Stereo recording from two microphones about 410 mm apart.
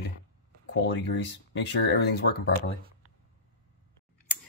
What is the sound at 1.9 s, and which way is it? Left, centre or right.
Speech, left.